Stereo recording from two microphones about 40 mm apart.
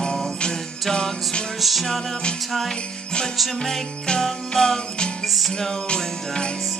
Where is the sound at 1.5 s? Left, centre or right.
Centre.